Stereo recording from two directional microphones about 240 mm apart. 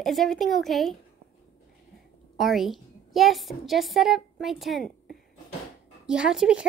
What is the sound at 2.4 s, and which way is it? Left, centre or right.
A woman's voice, centre.